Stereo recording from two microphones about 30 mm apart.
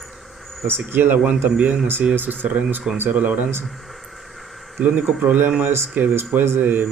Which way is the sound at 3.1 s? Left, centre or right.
Right.